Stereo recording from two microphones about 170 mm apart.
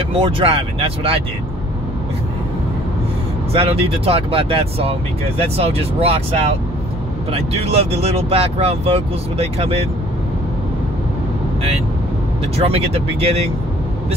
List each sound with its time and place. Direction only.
0.4 s speech: 30° right (ahead or behind)
3.5 s speech: 35° right (ahead or behind)
12.5 s speech: 35° right (ahead or behind)